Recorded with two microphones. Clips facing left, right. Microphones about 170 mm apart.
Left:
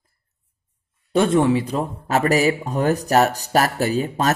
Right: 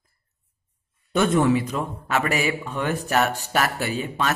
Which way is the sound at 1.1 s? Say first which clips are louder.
Left 3 dB; 30° left (ahead or behind).